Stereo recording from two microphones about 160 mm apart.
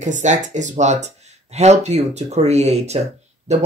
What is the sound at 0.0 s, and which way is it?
Speech, 50° right (ahead or behind).